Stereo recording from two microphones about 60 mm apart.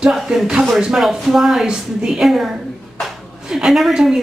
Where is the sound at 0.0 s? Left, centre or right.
Centre.